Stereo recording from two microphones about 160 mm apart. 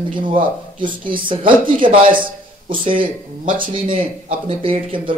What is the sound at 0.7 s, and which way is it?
Speech, 30° right (ahead or behind).